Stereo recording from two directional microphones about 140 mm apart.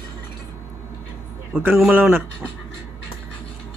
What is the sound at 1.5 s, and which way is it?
Speech, 15° right (ahead or behind).